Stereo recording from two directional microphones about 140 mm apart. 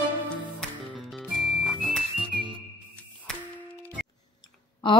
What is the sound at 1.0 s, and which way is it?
Music, centre (ahead or behind).